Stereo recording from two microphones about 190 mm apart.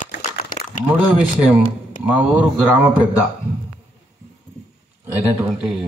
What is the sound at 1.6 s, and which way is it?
Speech, 45° left (ahead or behind).